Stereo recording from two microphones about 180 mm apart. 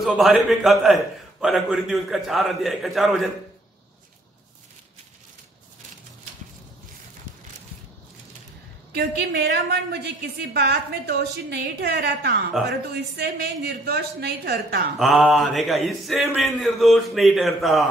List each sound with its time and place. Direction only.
0.0 s a man's voice: centre (ahead or behind)
9.3 s a woman's voice: 65° right (ahead or behind)
12.6 s a man's voice: centre (ahead or behind)
13.2 s a woman's voice: 65° right (ahead or behind)
15.0 s a man's voice: centre (ahead or behind)